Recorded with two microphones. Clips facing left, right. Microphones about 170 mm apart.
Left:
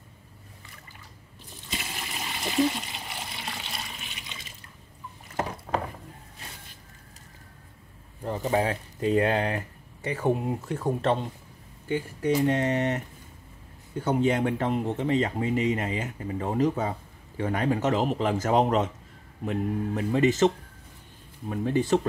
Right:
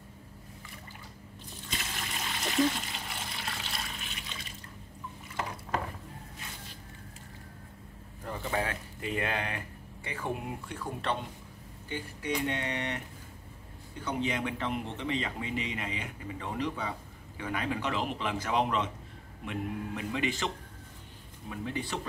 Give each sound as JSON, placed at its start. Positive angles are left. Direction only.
{"t": 1.7, "sound": "water", "side_deg": 5}
{"t": 5.7, "sound": "mechanisms", "side_deg": 45}
{"t": 8.4, "sound": "speech", "side_deg": 35}
{"t": 12.4, "sound": "speech", "side_deg": 40}
{"t": 14.0, "sound": "speech", "side_deg": 50}